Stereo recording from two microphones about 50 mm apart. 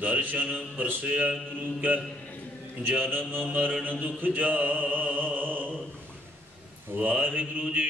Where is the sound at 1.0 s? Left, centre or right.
Right.